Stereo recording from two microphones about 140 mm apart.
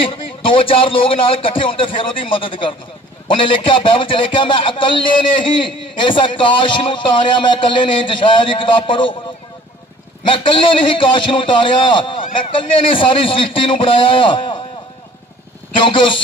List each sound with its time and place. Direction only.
0.0 s a man's voice: 40° left (ahead or behind)
10.2 s a man's voice: 35° left (ahead or behind)